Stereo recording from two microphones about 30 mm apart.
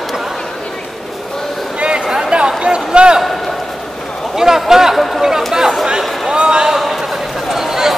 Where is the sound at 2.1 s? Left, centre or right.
Right.